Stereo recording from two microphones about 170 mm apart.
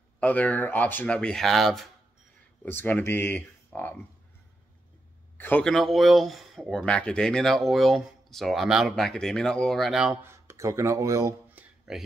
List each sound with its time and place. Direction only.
0.2 s speech: 10° left (ahead or behind)
2.6 s speech: 10° left (ahead or behind)
5.4 s speech: 5° left (ahead or behind)
10.2 s speech: 15° right (ahead or behind)
11.9 s speech: 5° right (ahead or behind)